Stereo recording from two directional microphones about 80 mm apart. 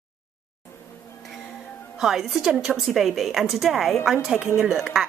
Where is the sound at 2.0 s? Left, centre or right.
Centre.